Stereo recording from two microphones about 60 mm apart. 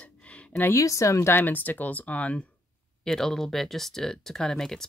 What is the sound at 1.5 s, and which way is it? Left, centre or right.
Speech, left.